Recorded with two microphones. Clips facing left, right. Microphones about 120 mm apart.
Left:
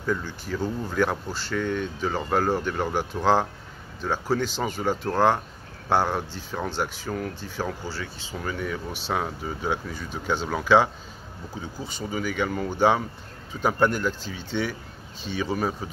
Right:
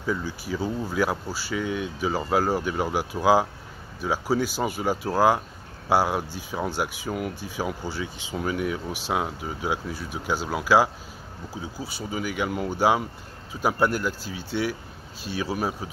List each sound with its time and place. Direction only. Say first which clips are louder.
0.0 s speech: even; 10° right (ahead or behind)